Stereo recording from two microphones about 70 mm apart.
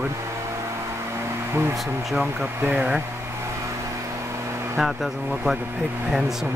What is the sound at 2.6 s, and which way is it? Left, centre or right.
Speech, right.